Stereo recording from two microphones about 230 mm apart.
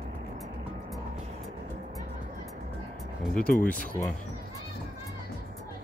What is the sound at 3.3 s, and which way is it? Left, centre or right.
Speech, centre.